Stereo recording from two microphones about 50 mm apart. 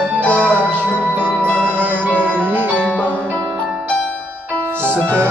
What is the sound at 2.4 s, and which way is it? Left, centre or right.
Music, right.